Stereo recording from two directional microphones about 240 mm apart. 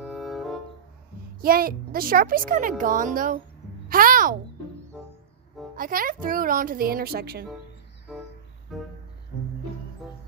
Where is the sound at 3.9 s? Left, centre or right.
Right.